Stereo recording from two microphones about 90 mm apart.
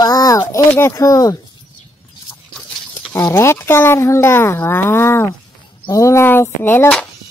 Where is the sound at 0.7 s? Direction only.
30° left (ahead or behind).